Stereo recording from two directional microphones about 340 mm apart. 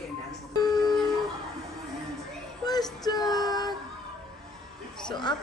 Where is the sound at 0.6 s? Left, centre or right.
Centre.